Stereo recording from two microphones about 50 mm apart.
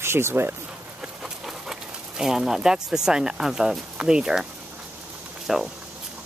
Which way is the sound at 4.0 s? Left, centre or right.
Centre.